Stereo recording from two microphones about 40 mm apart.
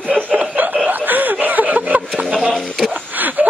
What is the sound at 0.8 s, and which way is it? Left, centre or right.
Snicker, right.